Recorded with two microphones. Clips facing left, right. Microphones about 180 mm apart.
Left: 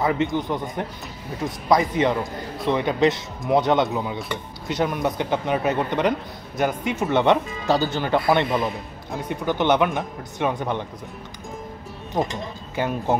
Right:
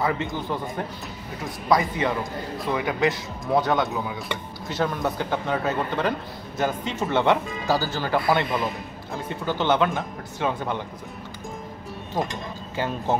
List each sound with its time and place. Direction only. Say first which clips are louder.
0.0 s speech: left 4 dB; 20° left (ahead or behind)
12.2 s speech: left 3 dB; 20° left (ahead or behind)